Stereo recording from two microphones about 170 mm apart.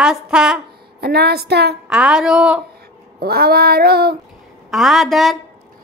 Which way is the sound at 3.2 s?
65° right (ahead or behind).